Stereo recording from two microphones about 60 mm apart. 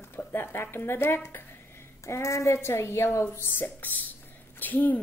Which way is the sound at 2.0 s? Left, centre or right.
Left.